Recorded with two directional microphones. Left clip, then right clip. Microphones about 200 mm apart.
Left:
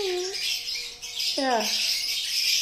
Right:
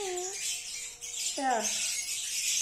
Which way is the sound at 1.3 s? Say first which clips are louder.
Left 4 dB; 20° left (ahead or behind).